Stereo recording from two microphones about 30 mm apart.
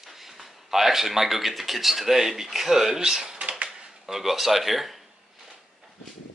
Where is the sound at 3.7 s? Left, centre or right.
Centre.